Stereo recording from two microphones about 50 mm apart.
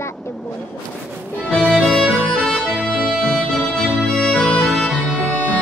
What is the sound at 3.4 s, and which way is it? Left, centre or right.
Music, centre.